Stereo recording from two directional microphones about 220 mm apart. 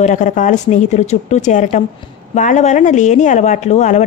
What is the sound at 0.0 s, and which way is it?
A woman's voice, 35° left (ahead or behind).